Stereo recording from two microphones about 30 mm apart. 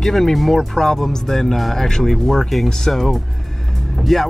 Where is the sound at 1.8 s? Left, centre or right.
Centre.